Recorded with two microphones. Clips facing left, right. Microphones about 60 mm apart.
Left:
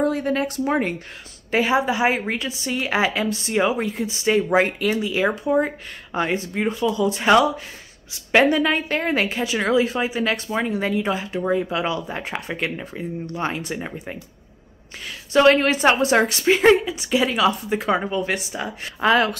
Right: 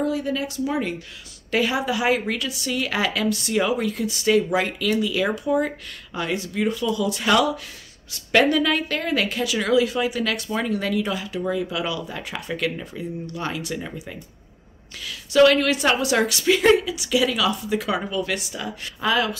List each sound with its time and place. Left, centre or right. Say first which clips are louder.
0.0 s speech: left 3 dB; left
1.5 s a woman's voice: left 3 dB; left